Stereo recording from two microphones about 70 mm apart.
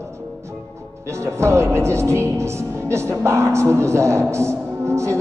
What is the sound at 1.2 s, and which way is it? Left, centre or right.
Music, right.